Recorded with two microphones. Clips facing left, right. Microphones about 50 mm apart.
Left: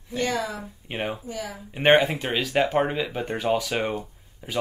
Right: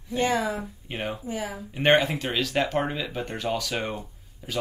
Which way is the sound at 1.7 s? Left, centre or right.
Centre.